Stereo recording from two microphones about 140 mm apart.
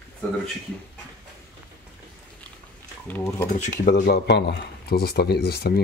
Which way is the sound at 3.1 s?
15° left (ahead or behind).